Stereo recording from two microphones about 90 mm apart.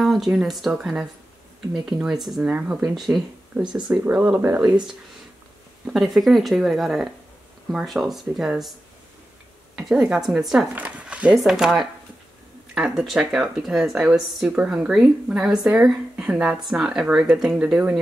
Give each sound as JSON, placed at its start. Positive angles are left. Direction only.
{"t": 0.0, "sound": "speech", "side_deg": -5}
{"t": 2.4, "sound": "speech", "side_deg": -15}
{"t": 5.9, "sound": "speech", "side_deg": -5}
{"t": 9.8, "sound": "speech", "side_deg": -5}
{"t": 10.7, "sound": "a sound", "side_deg": -15}
{"t": 11.3, "sound": "speech", "side_deg": -5}